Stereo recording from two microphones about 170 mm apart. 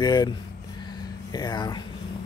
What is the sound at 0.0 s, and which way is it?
Speech, 25° left (ahead or behind).